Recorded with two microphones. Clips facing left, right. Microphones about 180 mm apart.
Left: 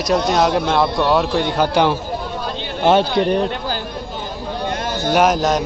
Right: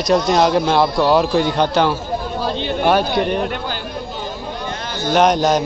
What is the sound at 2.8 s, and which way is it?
Speech, 25° left (ahead or behind).